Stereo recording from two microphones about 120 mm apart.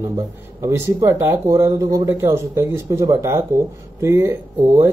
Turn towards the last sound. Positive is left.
turn(degrees=-20)  # may be behind; listen again after turning